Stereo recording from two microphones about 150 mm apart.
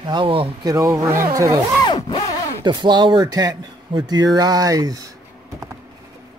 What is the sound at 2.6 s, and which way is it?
Speech, 30° right (ahead or behind).